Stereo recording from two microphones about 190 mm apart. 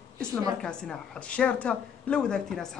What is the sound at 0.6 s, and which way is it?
A woman's voice, 5° left (ahead or behind).